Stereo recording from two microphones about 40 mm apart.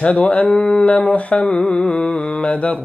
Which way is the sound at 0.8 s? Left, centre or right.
Left.